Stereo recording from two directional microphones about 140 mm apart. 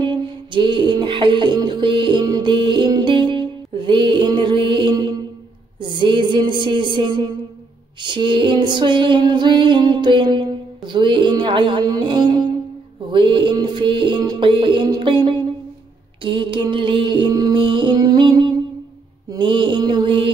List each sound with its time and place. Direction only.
0.0 s music: 35° right (ahead or behind)